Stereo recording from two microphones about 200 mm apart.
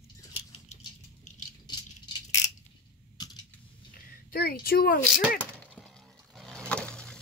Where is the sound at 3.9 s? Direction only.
50° left (ahead or behind).